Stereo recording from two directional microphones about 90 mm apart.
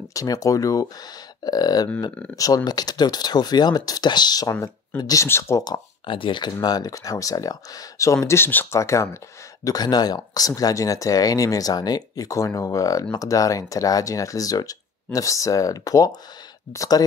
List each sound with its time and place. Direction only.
0.1 s speech: 40° left (ahead or behind)
6.0 s speech: 70° left (ahead or behind); by 9.2 s 35° left (ahead or behind)
9.7 s speech: 50° left (ahead or behind)